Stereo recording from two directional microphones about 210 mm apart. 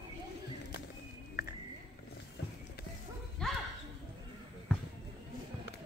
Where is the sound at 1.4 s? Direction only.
45° left (ahead or behind).